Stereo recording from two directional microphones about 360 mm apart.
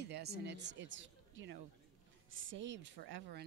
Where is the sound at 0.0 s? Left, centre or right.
Right.